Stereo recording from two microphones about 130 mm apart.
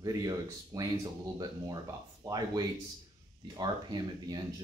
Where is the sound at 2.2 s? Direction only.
30° right (ahead or behind).